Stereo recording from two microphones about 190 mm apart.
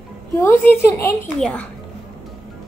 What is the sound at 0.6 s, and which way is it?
Speech, 10° left (ahead or behind).